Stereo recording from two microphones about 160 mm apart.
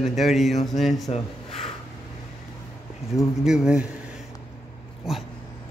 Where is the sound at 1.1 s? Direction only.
40° left (ahead or behind).